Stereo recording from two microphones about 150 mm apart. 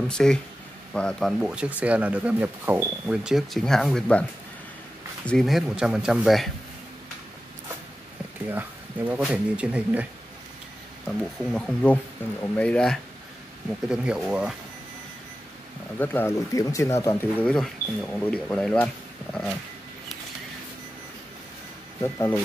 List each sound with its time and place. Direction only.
0.1 s speech: 5° left (ahead or behind)
8.5 s speech: 10° right (ahead or behind)
11.1 s speech: 5° left (ahead or behind)
13.8 s speech: 5° right (ahead or behind)
16.0 s speech: 15° left (ahead or behind)
22.0 s speech: 15° left (ahead or behind)